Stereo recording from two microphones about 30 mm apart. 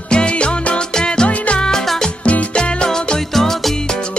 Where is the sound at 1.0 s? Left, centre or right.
Left.